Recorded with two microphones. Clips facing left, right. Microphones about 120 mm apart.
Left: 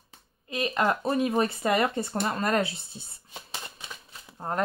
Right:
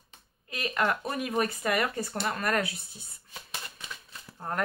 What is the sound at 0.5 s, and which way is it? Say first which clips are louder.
Speech: left 3 dB; 25° left (ahead or behind).